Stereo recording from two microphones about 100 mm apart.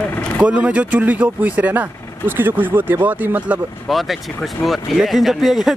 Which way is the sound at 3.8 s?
Centre (ahead or behind).